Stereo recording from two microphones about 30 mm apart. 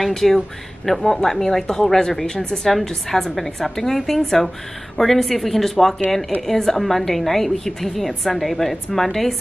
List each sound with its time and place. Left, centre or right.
0.1 s a woman's voice: centre